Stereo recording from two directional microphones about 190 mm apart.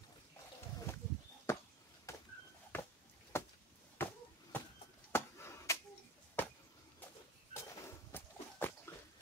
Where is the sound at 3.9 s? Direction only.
10° left (ahead or behind).